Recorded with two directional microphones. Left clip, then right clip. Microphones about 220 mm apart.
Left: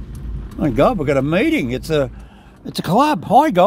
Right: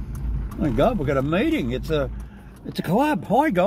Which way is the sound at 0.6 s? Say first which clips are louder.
Left 5 dB; 35° left (ahead or behind).